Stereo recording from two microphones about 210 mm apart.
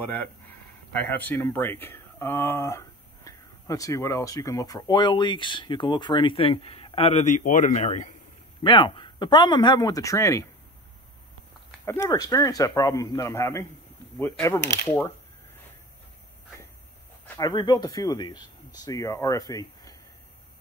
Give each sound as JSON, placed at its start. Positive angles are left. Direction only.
{"t": 0.0, "sound": "speech", "side_deg": 10}
{"t": 8.6, "sound": "speech", "side_deg": 20}
{"t": 11.8, "sound": "speech", "side_deg": 15}
{"t": 17.4, "sound": "speech", "side_deg": 20}